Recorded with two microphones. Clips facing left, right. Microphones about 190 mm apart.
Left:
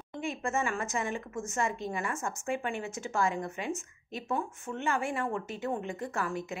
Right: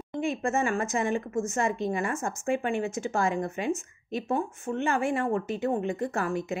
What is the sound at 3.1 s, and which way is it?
A woman's voice, 45° right (ahead or behind).